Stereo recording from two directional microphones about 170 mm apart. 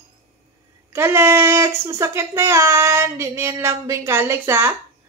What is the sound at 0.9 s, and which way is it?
Speech, 15° right (ahead or behind).